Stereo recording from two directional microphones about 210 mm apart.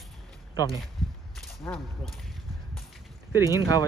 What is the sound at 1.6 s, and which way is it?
Speech, 10° left (ahead or behind).